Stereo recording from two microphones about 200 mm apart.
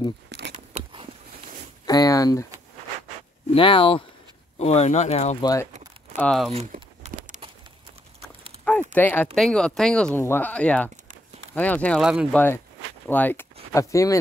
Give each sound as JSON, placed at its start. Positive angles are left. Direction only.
{"t": 0.3, "sound": "a sound", "side_deg": -60}
{"t": 1.9, "sound": "speech", "side_deg": 15}
{"t": 3.5, "sound": "speech", "side_deg": 25}
{"t": 5.4, "sound": "speech", "side_deg": 15}
{"t": 6.1, "sound": "speech", "side_deg": 5}
{"t": 6.5, "sound": "crumpling", "side_deg": -35}
{"t": 8.6, "sound": "speech", "side_deg": 5}
{"t": 12.0, "sound": "speech", "side_deg": -5}
{"t": 13.1, "sound": "speech", "side_deg": 10}